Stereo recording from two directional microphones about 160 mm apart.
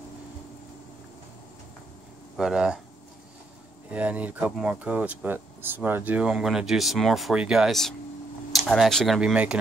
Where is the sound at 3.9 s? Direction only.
10° right (ahead or behind).